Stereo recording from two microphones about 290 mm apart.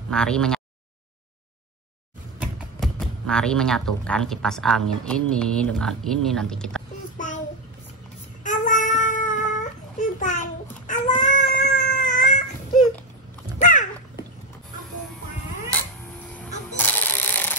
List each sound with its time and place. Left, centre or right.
0.1 s speech: centre
2.4 s speech: centre
7.2 s child singing: left
8.5 s child singing: left
13.6 s a sound: left
16.7 s a sound: centre